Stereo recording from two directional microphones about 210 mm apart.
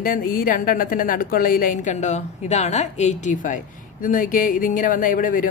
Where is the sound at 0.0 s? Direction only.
40° left (ahead or behind).